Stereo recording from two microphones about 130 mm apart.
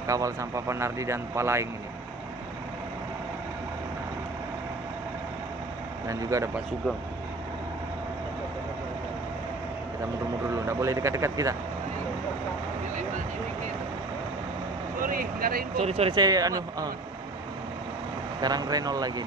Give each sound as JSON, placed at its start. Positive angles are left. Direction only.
{"t": 0.0, "sound": "speech", "side_deg": -25}
{"t": 6.0, "sound": "speech", "side_deg": -25}
{"t": 10.5, "sound": "speech", "side_deg": -25}
{"t": 15.0, "sound": "speech", "side_deg": -90}
{"t": 15.8, "sound": "speech", "side_deg": -50}
{"t": 16.2, "sound": "speech", "side_deg": -30}
{"t": 18.4, "sound": "speech", "side_deg": -30}